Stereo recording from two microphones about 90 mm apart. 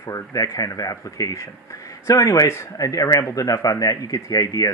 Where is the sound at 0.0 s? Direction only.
40° left (ahead or behind).